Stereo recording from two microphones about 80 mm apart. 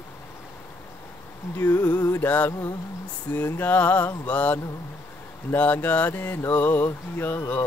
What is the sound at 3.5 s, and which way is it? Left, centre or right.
Speech, left.